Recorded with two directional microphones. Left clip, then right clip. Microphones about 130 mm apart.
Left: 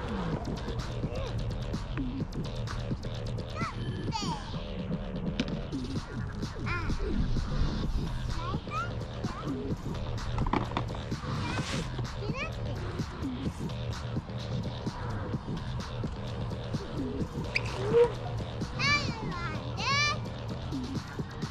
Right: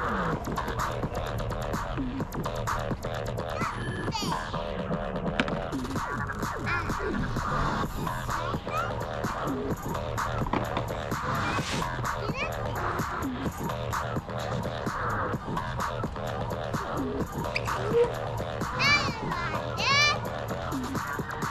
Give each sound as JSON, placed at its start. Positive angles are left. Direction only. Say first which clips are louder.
{"t": 7.2, "sound": "music", "louder": "right 9 dB", "side_deg": -20}
{"t": 17.6, "sound": "music", "louder": "even", "side_deg": 0}